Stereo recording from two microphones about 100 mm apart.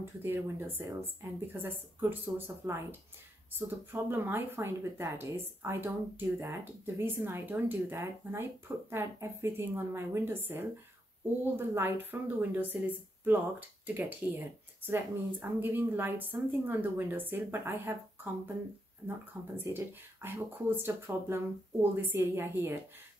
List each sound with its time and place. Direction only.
0.0 s a woman's voice: 25° right (ahead or behind)